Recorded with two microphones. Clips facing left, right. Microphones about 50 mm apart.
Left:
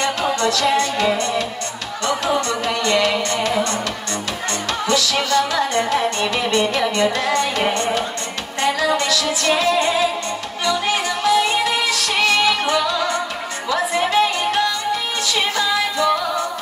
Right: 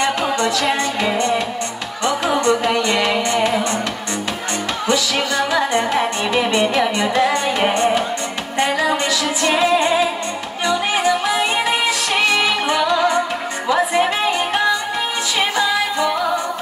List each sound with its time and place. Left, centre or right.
0.0 s music: centre
2.4 s music: centre
4.8 s music: centre